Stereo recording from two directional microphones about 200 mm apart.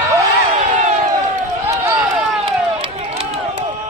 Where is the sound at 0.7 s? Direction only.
40° right (ahead or behind).